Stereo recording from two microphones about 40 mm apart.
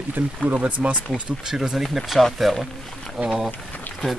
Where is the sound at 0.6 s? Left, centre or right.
Right.